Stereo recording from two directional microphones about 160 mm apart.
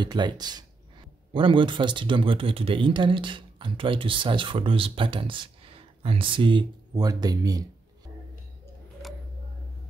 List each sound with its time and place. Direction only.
0.0 s speech: 25° right (ahead or behind)